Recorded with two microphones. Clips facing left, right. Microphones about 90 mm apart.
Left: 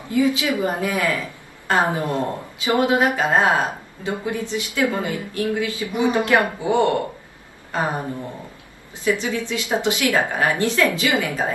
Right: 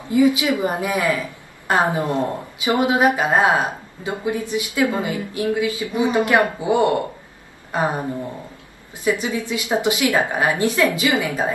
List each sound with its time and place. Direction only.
0.1 s a woman's voice: 20° right (ahead or behind)
9.0 s a woman's voice: 20° right (ahead or behind)